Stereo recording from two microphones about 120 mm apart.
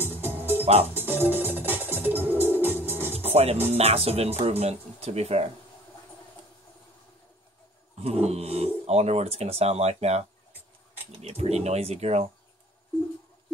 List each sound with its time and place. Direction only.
0.0 s music: 20° right (ahead or behind)
3.2 s music: 60° right (ahead or behind)
3.7 s speech: 60° right (ahead or behind)
8.0 s speech: 60° right (ahead or behind)
11.2 s speech: 60° right (ahead or behind)